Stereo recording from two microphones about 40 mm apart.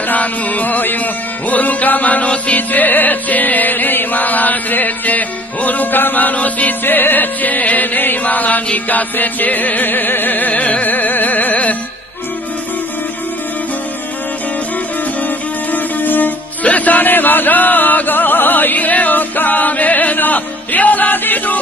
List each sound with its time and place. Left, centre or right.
0.1 s music: left
2.7 s music: left
6.8 s music: left
8.2 s chant: left
8.7 s music: left
10.5 s music: left
10.9 s music: left
15.2 s music: left
16.6 s music: left
17.1 s chant: left